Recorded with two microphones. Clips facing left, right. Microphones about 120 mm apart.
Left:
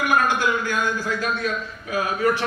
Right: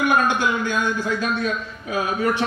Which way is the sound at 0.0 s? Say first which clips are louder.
Right 1 dB; 25° right (ahead or behind).